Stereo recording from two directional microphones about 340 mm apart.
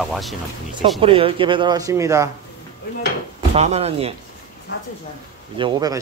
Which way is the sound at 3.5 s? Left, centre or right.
Centre.